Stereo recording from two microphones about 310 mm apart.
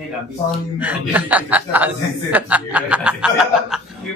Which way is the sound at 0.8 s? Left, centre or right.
Centre.